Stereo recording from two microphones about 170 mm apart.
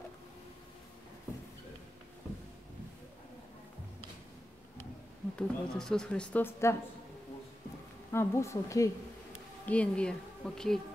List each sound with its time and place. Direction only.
5.3 s speech: 5° left (ahead or behind)
8.1 s speech: 15° left (ahead or behind)
9.7 s speech: 5° left (ahead or behind)